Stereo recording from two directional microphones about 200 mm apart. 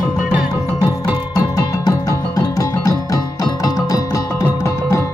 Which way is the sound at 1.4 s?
20° left (ahead or behind).